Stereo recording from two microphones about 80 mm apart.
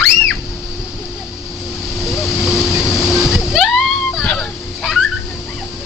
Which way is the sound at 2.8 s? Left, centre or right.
Left.